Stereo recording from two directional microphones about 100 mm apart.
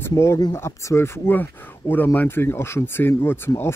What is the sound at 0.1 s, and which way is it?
Speech, 30° left (ahead or behind).